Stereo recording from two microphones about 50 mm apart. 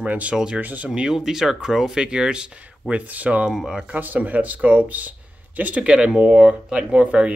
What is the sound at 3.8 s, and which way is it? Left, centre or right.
Speech, right.